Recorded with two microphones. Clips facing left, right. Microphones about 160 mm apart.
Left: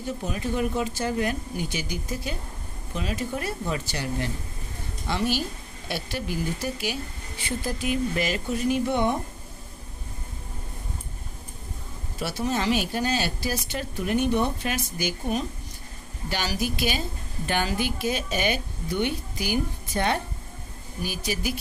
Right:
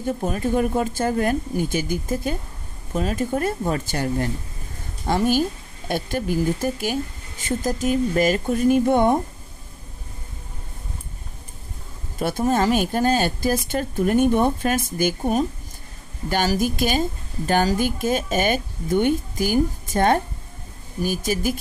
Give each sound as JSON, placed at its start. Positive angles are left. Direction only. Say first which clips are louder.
{"t": 0.0, "sound": "speech", "louder": "right 6 dB", "side_deg": -50}
{"t": 12.2, "sound": "speech", "louder": "right 7 dB", "side_deg": -50}